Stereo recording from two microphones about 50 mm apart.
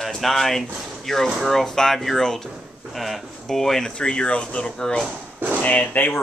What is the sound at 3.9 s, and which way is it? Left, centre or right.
Speech, centre.